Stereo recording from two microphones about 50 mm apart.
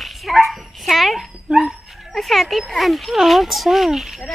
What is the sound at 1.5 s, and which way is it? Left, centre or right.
Dog, centre.